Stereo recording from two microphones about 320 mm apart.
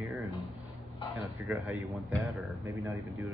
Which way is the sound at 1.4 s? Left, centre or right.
Centre.